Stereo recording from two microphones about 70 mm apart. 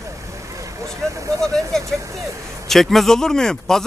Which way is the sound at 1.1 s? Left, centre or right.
Right.